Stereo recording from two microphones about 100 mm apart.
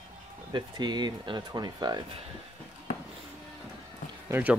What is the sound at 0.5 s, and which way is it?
Speech, 45° right (ahead or behind).